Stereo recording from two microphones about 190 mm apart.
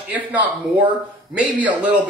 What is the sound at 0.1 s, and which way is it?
Speech, 10° right (ahead or behind).